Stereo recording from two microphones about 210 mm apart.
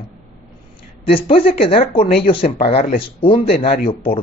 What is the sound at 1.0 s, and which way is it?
A woman's voice, 25° left (ahead or behind).